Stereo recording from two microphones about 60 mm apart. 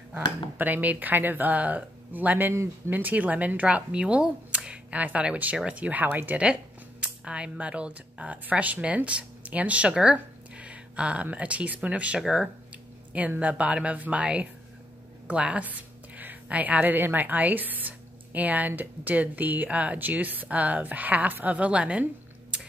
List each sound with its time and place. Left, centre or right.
0.1 s a woman's voice: right
6.4 s speech: centre
12.2 s speech: centre
13.4 s a woman's voice: right